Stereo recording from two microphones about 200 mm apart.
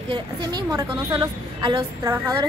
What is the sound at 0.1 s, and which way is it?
A woman's voice, 20° right (ahead or behind).